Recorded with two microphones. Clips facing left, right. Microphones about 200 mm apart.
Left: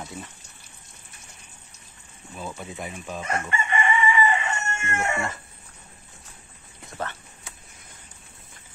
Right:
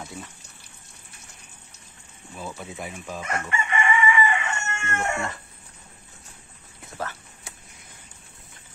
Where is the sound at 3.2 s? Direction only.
30° left (ahead or behind).